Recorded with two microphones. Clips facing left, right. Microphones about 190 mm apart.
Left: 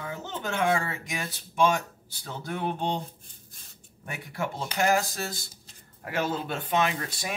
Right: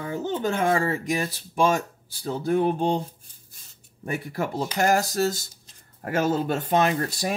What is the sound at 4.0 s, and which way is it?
Speech, 40° right (ahead or behind).